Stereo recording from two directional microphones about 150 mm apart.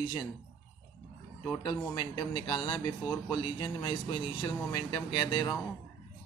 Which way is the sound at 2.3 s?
35° left (ahead or behind).